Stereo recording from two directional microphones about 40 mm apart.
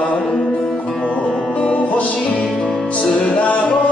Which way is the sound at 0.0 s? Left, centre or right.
Left.